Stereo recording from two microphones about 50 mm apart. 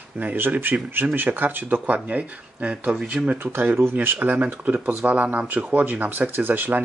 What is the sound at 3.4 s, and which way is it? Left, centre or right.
Speech, right.